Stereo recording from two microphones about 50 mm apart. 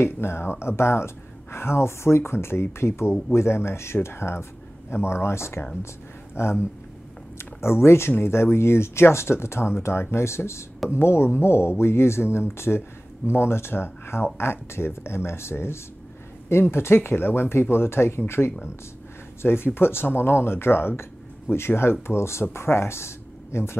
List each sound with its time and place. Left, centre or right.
0.0 s speech: left